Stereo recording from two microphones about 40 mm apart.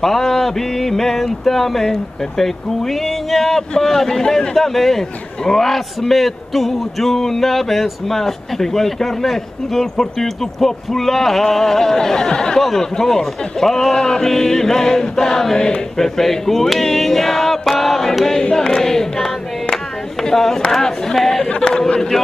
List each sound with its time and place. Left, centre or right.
0.0 s speech: centre
4.6 s music: centre
5.4 s speech: centre
16.2 s music: centre
18.4 s speech: centre
19.7 s a sound: centre
20.7 s speech: centre
21.5 s speech: left